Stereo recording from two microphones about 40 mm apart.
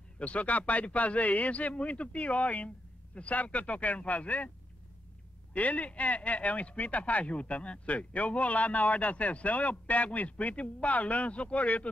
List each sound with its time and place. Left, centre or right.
0.2 s speech: left
5.5 s speech: left